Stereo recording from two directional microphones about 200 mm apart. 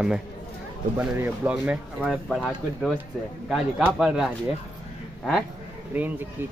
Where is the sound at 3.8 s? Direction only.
5° right (ahead or behind).